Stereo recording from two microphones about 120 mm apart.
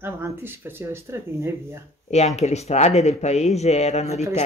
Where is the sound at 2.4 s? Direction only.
65° left (ahead or behind).